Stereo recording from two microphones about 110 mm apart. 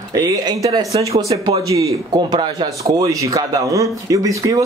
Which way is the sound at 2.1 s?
45° right (ahead or behind).